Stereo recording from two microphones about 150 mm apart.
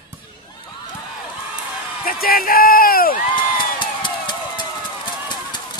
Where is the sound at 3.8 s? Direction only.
30° left (ahead or behind).